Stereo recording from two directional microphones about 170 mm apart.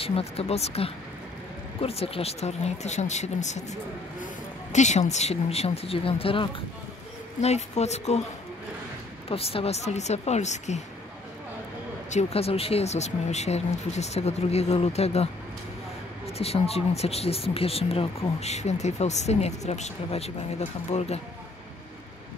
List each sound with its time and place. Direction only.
0.0 s speech: 35° left (ahead or behind)
4.7 s speech: 45° left (ahead or behind)
9.3 s speech: 35° left (ahead or behind)
12.1 s speech: 40° left (ahead or behind)
16.3 s speech: 35° left (ahead or behind)